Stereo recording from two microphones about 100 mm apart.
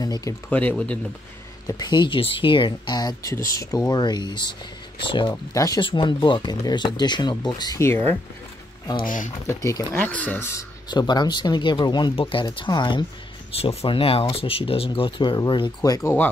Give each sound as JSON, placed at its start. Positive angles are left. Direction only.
{"t": 0.0, "sound": "speech", "side_deg": 40}
{"t": 0.5, "sound": "speech", "side_deg": 15}
{"t": 1.7, "sound": "speech", "side_deg": 45}
{"t": 3.0, "sound": "speech", "side_deg": 40}
{"t": 3.9, "sound": "speech", "side_deg": 45}
{"t": 5.3, "sound": "speech", "side_deg": 35}
{"t": 5.8, "sound": "speech", "side_deg": 55}
{"t": 9.5, "sound": "speech", "side_deg": 30}
{"t": 9.9, "sound": "speech", "side_deg": 15}
{"t": 10.9, "sound": "speech", "side_deg": 45}
{"t": 12.2, "sound": "speech", "side_deg": 60}
{"t": 12.5, "sound": "speech", "side_deg": 50}
{"t": 13.5, "sound": "speech", "side_deg": 85}
{"t": 15.9, "sound": "speech", "side_deg": 30}